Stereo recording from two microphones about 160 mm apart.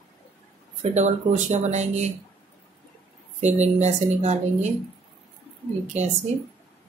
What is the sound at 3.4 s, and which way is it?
Speech, 45° right (ahead or behind).